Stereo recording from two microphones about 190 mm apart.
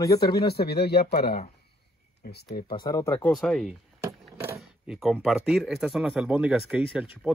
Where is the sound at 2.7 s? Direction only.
20° left (ahead or behind).